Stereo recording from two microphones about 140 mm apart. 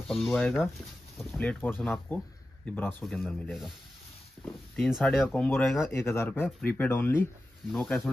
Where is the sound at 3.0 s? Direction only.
5° left (ahead or behind).